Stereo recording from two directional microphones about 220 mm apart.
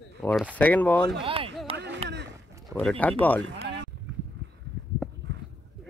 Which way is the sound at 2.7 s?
5° left (ahead or behind).